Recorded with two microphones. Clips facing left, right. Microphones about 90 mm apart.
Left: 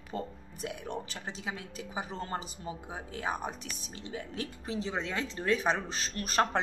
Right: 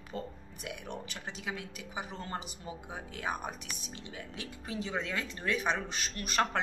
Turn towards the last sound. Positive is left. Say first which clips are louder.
# left 2 dB
turn(degrees=35)  # may be behind; listen again after turning